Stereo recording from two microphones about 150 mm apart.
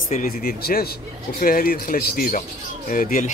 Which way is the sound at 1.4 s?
75° left (ahead or behind).